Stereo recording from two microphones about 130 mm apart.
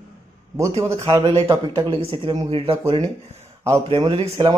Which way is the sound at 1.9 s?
45° right (ahead or behind).